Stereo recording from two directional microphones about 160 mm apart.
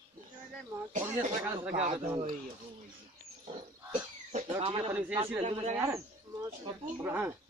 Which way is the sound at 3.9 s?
50° right (ahead or behind).